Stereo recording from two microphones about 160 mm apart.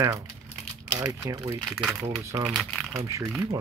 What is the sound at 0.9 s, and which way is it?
Speech, 25° right (ahead or behind).